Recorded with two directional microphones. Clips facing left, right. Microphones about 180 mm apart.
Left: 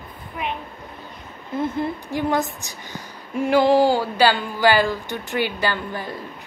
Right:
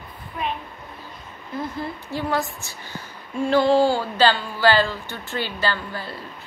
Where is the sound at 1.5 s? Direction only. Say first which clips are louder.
Left 5 dB; 20° left (ahead or behind).